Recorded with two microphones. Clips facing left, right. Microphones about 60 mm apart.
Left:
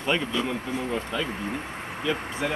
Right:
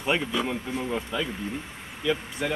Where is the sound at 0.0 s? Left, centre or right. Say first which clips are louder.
Even; centre.